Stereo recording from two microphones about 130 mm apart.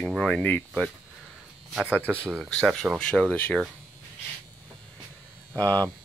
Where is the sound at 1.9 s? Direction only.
10° left (ahead or behind).